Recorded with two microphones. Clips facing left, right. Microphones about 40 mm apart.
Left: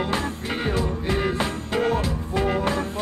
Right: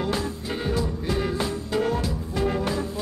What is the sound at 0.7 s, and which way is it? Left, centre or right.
Music, left.